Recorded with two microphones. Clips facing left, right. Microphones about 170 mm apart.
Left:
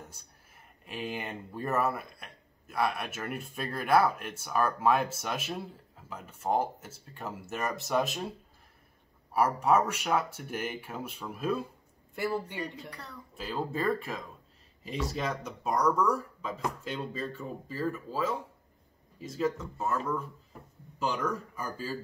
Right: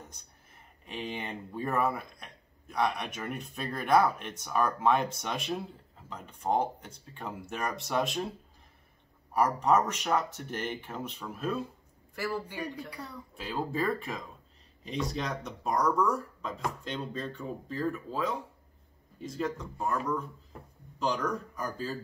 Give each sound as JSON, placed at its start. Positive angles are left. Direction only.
{"t": 0.1, "sound": "speech", "side_deg": 5}
{"t": 9.3, "sound": "speech", "side_deg": 5}
{"t": 12.2, "sound": "speech", "side_deg": 20}
{"t": 12.4, "sound": "speech", "side_deg": -10}
{"t": 13.4, "sound": "speech", "side_deg": 0}
{"t": 21.0, "sound": "speech", "side_deg": 5}